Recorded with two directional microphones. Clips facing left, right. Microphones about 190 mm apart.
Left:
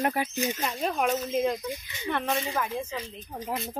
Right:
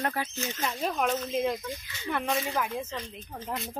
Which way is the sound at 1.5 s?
15° left (ahead or behind).